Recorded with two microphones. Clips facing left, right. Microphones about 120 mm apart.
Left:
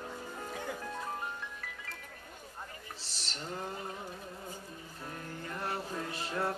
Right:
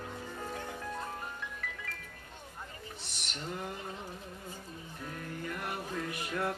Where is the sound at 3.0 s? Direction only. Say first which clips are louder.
Right 1 dB; 30° left (ahead or behind).